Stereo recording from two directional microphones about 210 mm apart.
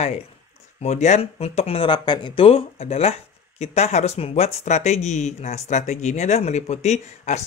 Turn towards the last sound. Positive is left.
turn(degrees=35)  # may be behind; listen again after turning